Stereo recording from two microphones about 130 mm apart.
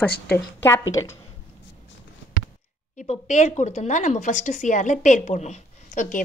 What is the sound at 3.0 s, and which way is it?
A woman's voice, 65° left (ahead or behind).